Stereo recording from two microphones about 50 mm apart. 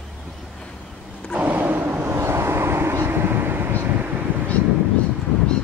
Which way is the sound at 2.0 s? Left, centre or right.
Right.